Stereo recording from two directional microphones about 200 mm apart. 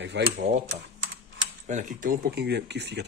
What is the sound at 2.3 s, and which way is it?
Speech, 55° right (ahead or behind).